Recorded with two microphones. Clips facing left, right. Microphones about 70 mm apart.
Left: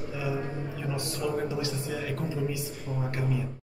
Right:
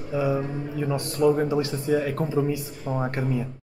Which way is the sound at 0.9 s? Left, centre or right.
Right.